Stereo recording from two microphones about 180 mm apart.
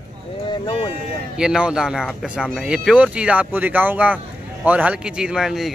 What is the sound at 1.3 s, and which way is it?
A man's voice, 5° right (ahead or behind).